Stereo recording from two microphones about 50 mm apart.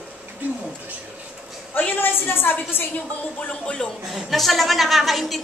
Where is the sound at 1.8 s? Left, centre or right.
Left.